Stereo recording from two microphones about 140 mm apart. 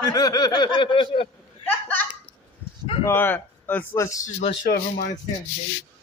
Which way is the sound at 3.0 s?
15° left (ahead or behind).